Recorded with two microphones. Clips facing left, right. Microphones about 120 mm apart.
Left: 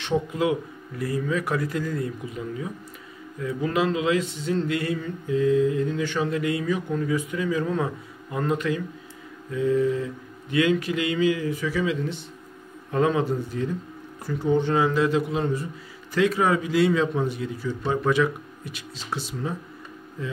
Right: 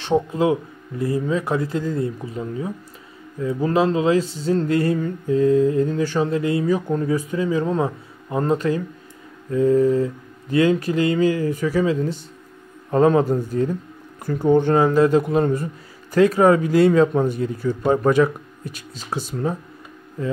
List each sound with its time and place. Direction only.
0.0 s a man's voice: 30° right (ahead or behind)